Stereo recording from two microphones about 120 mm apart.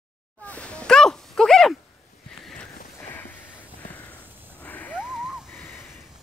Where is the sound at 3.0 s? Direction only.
15° left (ahead or behind).